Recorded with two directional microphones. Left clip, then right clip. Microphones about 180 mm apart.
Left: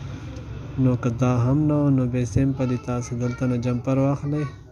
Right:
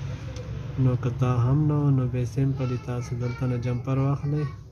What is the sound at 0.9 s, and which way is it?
Speech, 25° left (ahead or behind).